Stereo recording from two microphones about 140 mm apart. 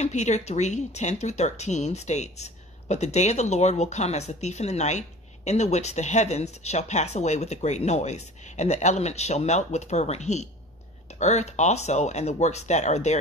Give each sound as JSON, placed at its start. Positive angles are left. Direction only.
{"t": 0.0, "sound": "speech", "side_deg": 55}